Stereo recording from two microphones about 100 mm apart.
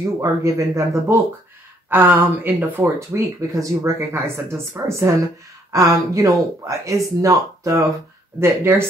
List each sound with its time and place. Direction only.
0.2 s speech: 30° right (ahead or behind)
3.5 s speech: 30° right (ahead or behind)